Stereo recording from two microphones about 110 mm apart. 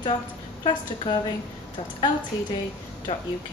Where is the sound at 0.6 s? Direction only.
50° left (ahead or behind).